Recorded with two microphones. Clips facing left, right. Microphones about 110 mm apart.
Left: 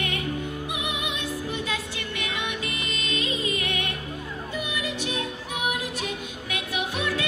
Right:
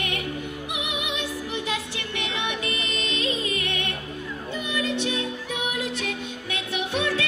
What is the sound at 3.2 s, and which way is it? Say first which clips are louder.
Music: right 2 dB; 20° left (ahead or behind).